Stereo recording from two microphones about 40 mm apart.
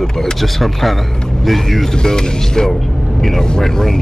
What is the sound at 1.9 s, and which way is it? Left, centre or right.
Speech, centre.